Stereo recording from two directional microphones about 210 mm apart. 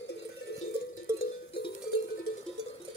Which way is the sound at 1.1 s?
15° right (ahead or behind).